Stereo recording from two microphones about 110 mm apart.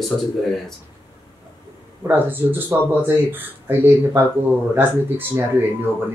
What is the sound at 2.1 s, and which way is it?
Speech, 20° right (ahead or behind).